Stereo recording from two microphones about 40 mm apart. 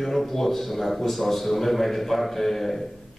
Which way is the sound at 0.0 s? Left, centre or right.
Centre.